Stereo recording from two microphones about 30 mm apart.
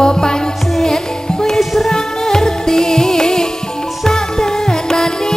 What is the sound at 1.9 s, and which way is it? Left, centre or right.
Music, centre.